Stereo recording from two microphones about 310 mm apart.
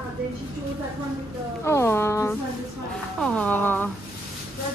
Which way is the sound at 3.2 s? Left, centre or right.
Centre.